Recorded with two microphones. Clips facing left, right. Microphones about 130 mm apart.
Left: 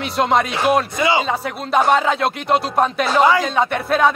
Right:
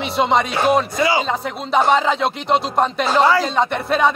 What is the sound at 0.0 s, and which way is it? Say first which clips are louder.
Music: even; centre (ahead or behind).